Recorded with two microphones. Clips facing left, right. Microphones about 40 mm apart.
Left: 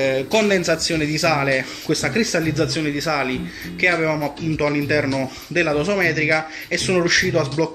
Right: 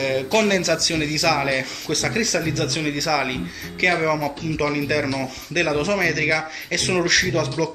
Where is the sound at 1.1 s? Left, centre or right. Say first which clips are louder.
Left 2 dB; left.